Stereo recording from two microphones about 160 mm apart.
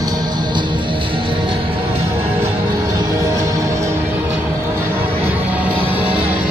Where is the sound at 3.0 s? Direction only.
20° right (ahead or behind).